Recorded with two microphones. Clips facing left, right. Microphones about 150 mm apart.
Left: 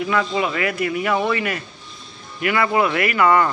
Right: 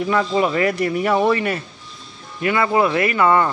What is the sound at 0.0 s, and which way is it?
A man's voice, 35° right (ahead or behind).